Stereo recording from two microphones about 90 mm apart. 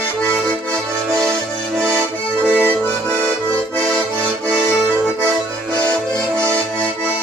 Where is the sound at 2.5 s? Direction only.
20° left (ahead or behind).